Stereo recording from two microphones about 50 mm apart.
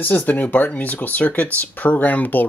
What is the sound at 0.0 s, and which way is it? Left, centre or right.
Speech, left.